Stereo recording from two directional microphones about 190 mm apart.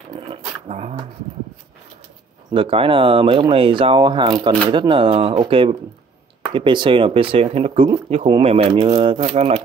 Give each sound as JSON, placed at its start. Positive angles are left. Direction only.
{"t": 0.1, "sound": "dog", "side_deg": -35}
{"t": 2.5, "sound": "speech", "side_deg": -25}